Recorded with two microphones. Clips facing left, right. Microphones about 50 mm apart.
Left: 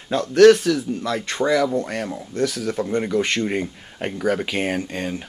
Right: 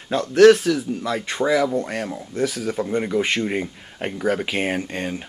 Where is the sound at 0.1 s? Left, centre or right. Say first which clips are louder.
Even; centre.